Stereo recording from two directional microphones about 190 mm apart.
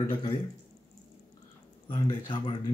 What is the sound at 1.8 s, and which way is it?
Speech, 25° left (ahead or behind).